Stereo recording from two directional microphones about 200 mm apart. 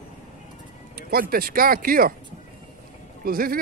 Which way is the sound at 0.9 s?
50° right (ahead or behind).